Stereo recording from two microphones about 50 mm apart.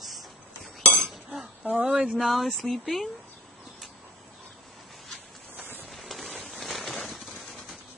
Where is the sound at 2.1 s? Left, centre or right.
Centre.